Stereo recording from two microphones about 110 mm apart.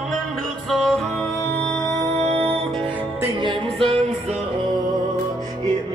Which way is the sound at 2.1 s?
80° right.